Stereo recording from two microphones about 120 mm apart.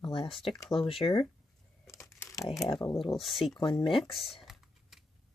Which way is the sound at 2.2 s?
25° left (ahead or behind).